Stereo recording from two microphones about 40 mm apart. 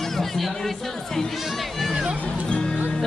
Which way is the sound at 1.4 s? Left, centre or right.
Centre.